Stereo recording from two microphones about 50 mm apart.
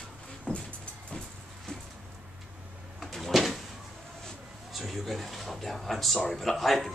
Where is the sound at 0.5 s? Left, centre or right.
Left.